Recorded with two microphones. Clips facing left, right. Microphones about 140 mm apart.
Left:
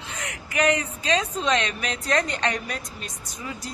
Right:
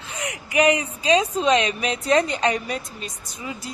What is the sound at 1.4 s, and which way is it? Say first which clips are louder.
A woman's voice: right 5 dB; 10° right (ahead or behind).